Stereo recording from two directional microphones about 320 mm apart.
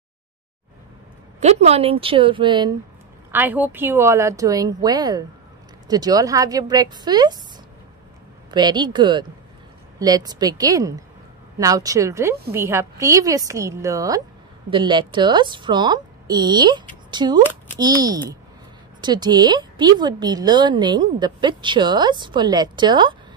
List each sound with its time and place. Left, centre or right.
1.4 s a woman's voice: centre
8.5 s a woman's voice: centre